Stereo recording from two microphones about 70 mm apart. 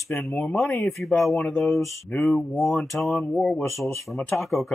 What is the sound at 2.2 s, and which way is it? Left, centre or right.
Mantra, centre.